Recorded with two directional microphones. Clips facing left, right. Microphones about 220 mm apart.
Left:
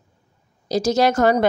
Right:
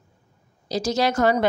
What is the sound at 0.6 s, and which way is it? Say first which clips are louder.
Speech: left 5 dB; 45° left (ahead or behind).